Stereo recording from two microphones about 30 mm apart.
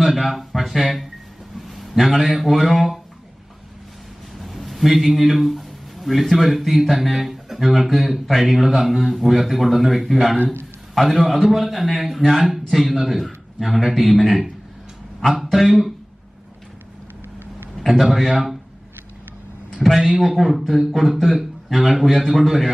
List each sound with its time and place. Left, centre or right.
0.0 s a man's voice: centre
4.4 s a man's voice: centre
17.7 s a man's voice: centre
19.8 s a man's voice: centre